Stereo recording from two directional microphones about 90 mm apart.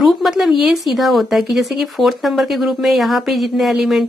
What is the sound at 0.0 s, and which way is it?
Speech, 5° right (ahead or behind).